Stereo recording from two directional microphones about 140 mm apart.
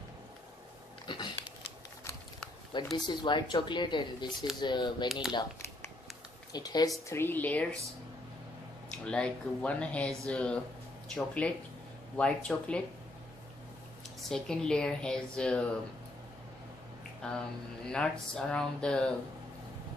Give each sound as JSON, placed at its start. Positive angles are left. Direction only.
{"t": 1.0, "sound": "a sound", "side_deg": 35}
{"t": 2.7, "sound": "speech", "side_deg": 35}
{"t": 5.0, "sound": "speech", "side_deg": 0}
{"t": 6.5, "sound": "speech", "side_deg": 30}
{"t": 7.1, "sound": "speech", "side_deg": 15}
{"t": 8.8, "sound": "speech", "side_deg": 5}
{"t": 14.3, "sound": "speech", "side_deg": 5}
{"t": 17.2, "sound": "speech", "side_deg": 5}